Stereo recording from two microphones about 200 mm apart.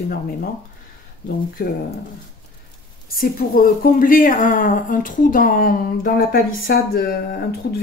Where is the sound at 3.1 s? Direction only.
45° left (ahead or behind).